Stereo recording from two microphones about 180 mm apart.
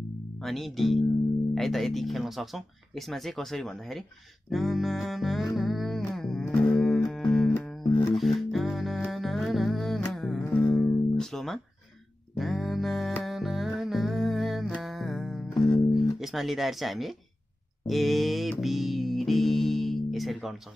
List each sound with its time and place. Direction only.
0.4 s speech: centre (ahead or behind)
5.6 s music: centre (ahead or behind)
7.8 s music: 25° left (ahead or behind)
8.1 s music: centre (ahead or behind)
16.2 s speech: centre (ahead or behind)
18.5 s music: centre (ahead or behind)